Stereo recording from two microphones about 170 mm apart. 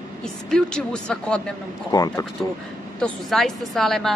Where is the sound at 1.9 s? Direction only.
20° left (ahead or behind).